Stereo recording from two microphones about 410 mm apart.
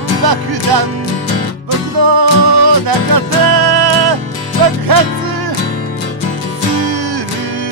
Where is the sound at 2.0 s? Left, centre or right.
Right.